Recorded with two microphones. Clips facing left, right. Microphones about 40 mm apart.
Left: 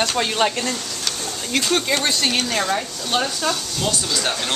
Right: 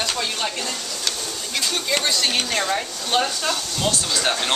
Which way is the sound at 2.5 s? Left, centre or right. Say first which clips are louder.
Left 1 dB; centre.